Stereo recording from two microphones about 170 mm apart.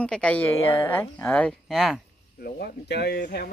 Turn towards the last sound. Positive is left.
turn(degrees=65)  # may be behind; listen again after turning